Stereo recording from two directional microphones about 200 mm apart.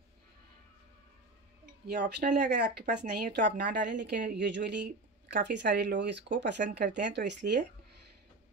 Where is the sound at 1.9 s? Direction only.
55° right (ahead or behind).